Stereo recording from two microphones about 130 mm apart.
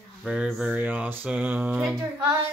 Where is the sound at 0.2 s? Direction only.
5° right (ahead or behind).